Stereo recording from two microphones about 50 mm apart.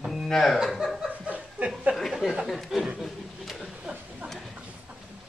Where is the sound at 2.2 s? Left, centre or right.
Centre.